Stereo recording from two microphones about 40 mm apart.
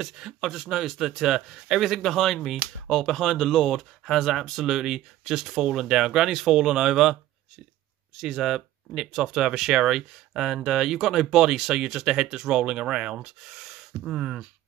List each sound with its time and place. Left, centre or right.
0.0 s speech: centre
1.8 s speech: centre
8.2 s speech: centre